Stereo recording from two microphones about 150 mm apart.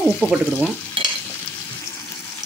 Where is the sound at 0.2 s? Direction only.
20° left (ahead or behind).